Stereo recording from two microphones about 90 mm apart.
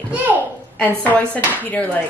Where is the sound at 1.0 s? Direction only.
15° left (ahead or behind).